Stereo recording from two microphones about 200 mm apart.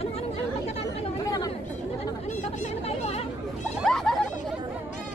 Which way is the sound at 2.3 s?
35° left (ahead or behind).